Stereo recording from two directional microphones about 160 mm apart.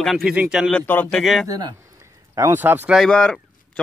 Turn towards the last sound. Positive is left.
turn(degrees=5)  # may be behind; listen again after turning